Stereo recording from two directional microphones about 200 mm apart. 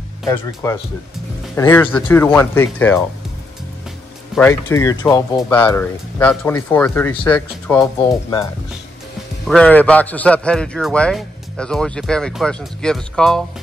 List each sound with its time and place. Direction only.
0.3 s speech: 15° left (ahead or behind)
4.4 s speech: 10° left (ahead or behind)
8.0 s speech: 20° left (ahead or behind)
9.5 s a man's voice: 5° left (ahead or behind)